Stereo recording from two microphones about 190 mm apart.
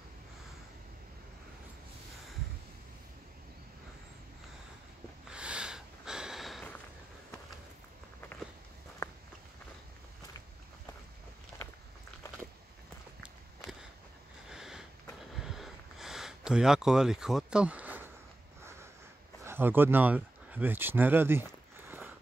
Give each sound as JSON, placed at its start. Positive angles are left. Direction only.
{"t": 5.3, "sound": "snort", "side_deg": -5}
{"t": 9.0, "sound": "walk", "side_deg": 15}
{"t": 11.5, "sound": "biting", "side_deg": 15}
{"t": 14.5, "sound": "a sound", "side_deg": 0}
{"t": 19.4, "sound": "speech", "side_deg": -10}